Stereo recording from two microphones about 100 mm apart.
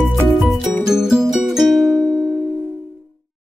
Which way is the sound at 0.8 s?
5° right (ahead or behind).